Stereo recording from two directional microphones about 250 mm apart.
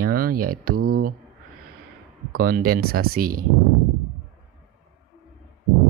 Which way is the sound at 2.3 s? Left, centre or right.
Right.